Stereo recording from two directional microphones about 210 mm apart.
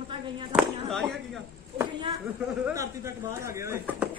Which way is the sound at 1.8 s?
20° right (ahead or behind).